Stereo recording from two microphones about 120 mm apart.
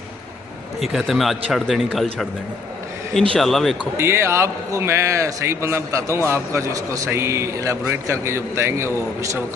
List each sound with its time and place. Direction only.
0.7 s a man's voice: centre (ahead or behind)
3.3 s a man's voice: centre (ahead or behind)
4.0 s a man's voice: 20° right (ahead or behind)